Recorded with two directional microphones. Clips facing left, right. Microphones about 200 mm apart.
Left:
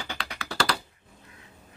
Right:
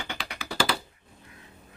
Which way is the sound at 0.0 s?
15° right (ahead or behind).